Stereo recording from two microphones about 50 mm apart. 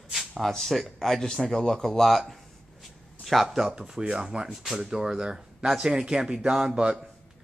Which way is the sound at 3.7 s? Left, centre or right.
Centre.